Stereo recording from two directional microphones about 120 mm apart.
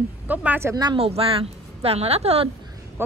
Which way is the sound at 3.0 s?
20° right (ahead or behind).